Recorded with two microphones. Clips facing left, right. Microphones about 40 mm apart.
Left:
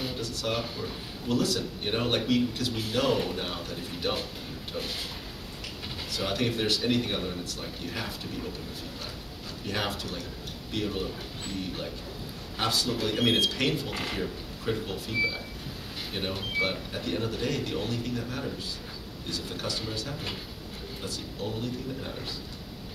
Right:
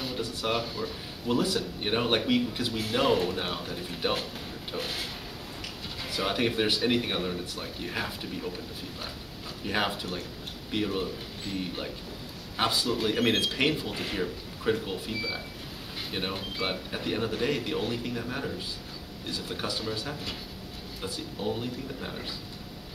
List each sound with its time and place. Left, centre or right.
0.1 s speech: centre
6.0 s speech: centre
9.7 s speech: centre
12.5 s speech: centre